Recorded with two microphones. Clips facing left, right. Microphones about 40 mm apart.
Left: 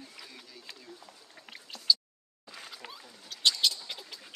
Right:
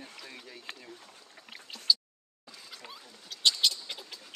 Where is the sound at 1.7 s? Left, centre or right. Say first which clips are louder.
Right 1 dB; centre.